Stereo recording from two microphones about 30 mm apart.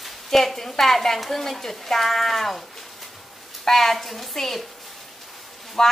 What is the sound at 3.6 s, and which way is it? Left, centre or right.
Speech, centre.